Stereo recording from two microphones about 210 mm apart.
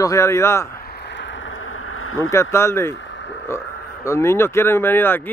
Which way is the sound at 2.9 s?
60° left (ahead or behind).